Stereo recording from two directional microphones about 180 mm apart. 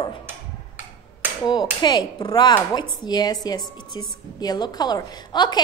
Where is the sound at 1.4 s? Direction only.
25° left (ahead or behind).